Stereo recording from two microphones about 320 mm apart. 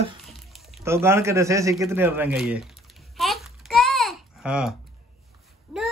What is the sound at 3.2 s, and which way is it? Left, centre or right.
Babbling, centre.